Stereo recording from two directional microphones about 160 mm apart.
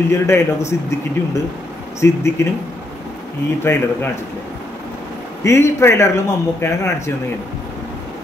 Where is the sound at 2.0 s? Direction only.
15° left (ahead or behind).